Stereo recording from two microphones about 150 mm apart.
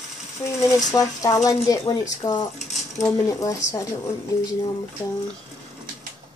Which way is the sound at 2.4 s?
50° left (ahead or behind).